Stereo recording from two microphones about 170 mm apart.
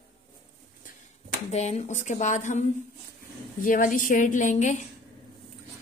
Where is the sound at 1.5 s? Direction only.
40° left (ahead or behind).